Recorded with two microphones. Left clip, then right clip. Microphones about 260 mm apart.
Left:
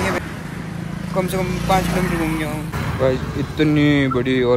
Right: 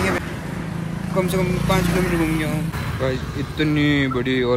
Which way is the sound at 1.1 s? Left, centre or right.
Centre.